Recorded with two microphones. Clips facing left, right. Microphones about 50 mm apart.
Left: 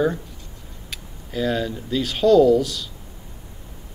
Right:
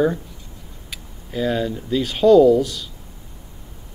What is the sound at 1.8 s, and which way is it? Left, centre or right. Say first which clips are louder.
Speech: right 3 dB; right.